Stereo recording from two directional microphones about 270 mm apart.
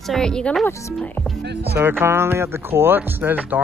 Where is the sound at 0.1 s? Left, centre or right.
Centre.